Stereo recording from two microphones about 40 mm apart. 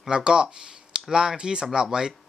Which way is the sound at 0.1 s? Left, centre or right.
Right.